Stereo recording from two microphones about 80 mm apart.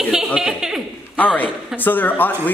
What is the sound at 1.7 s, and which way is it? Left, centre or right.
Speech, left.